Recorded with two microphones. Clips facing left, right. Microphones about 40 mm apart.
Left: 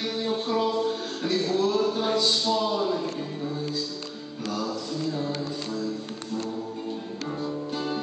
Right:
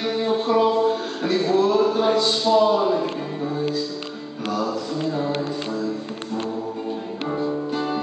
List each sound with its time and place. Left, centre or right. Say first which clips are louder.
0.0 s music: right 6 dB; centre
2.2 s speech: right 7 dB; centre
4.5 s music: right 6 dB; centre
7.2 s music: right 7 dB; right